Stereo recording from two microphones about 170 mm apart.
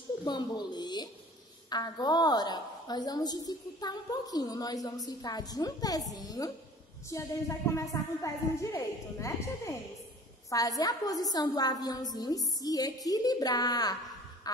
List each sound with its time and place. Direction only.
0.2 s a woman's voice: 25° left (ahead or behind)